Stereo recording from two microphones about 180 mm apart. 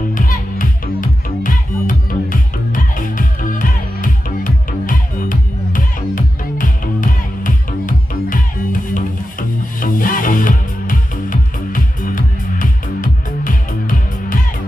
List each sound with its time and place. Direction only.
0.1 s music: 50° left (ahead or behind)